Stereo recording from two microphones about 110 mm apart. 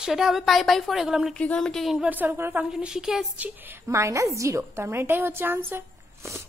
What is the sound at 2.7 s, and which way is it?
Speech, 5° right (ahead or behind).